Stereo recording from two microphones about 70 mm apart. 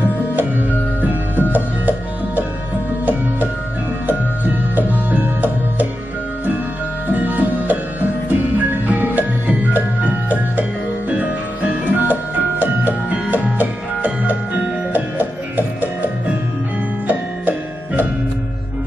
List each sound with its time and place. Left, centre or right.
0.0 s music: right
4.7 s music: right
7.1 s music: right
17.1 s music: right